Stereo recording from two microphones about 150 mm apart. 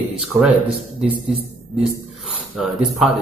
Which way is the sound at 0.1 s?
5° right (ahead or behind).